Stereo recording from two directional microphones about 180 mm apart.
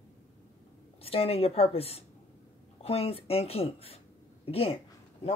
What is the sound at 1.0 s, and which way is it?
Speech, 30° left (ahead or behind).